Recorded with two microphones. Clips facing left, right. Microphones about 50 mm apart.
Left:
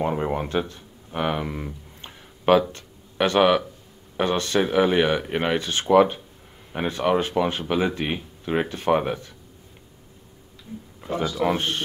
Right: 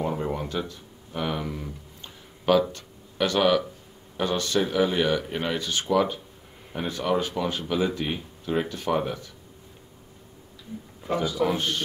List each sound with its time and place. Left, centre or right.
0.0 s a sound: left
2.7 s speech: left
11.4 s speech: left